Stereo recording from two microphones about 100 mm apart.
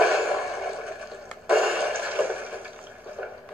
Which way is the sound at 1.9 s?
20° right (ahead or behind).